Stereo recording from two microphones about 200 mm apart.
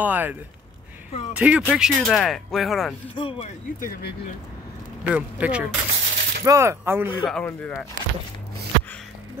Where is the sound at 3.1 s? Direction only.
25° left (ahead or behind).